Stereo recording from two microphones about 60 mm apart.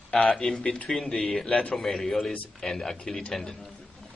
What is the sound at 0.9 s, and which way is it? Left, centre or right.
A man's voice, centre.